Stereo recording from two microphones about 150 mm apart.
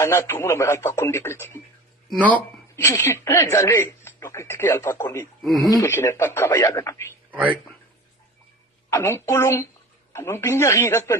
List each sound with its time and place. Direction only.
0.0 s speech: 15° left (ahead or behind)
7.2 s a sound: 10° right (ahead or behind)
8.9 s speech: 15° left (ahead or behind)